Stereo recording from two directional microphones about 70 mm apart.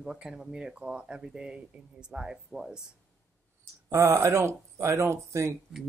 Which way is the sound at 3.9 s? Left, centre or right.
Right.